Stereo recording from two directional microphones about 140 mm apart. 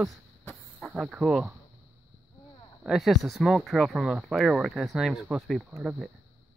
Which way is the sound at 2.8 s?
Centre (ahead or behind).